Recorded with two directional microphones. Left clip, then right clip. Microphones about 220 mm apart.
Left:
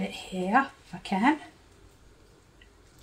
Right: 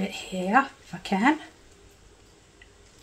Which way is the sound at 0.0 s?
15° right (ahead or behind).